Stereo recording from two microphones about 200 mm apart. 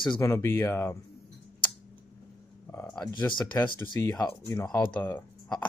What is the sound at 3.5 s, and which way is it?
Speech, 15° left (ahead or behind).